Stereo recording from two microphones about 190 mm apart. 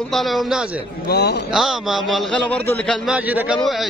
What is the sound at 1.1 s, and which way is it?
Speech, 60° left (ahead or behind).